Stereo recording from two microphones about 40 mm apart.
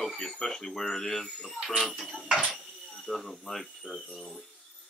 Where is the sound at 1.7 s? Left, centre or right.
Centre.